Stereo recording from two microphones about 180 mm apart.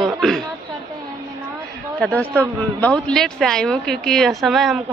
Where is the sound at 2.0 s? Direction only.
10° left (ahead or behind).